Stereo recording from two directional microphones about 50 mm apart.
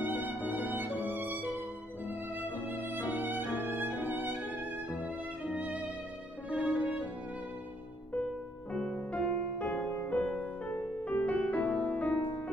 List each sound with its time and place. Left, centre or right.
0.0 s music: right
1.0 s violin: right
2.4 s music: right
3.5 s music: left
3.8 s music: right
5.5 s music: right
8.7 s music: centre
9.1 s music: left